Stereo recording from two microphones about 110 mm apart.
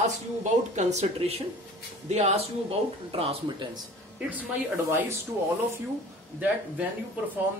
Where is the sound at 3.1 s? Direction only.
60° right (ahead or behind).